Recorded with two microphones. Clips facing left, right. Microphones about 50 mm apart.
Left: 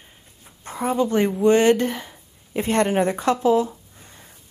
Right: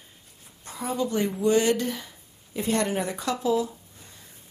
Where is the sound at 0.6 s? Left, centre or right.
Left.